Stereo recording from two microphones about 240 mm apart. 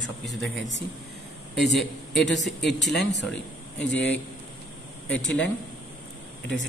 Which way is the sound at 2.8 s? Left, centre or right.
Left.